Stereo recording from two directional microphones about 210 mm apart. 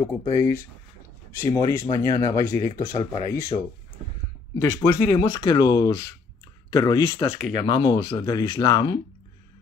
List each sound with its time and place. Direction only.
0.0 s speech: 15° left (ahead or behind)
5.1 s speech: 25° left (ahead or behind)
7.3 s speech: 40° right (ahead or behind)
7.6 s speech: 20° left (ahead or behind)